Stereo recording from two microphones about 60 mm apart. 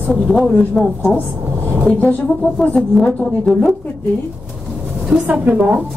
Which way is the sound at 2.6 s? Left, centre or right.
Left.